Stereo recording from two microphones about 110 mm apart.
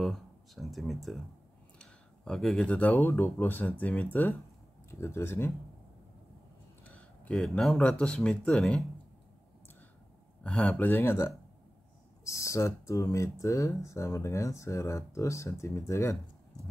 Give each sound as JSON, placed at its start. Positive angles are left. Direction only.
{"t": 0.0, "sound": "speech", "side_deg": 0}
{"t": 6.9, "sound": "speech", "side_deg": 10}
{"t": 10.4, "sound": "speech", "side_deg": 10}